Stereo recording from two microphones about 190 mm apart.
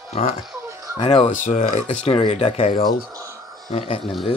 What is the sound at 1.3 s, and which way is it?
Speech, 40° left (ahead or behind).